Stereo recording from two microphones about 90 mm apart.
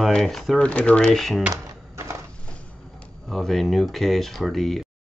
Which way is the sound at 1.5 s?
30° right (ahead or behind).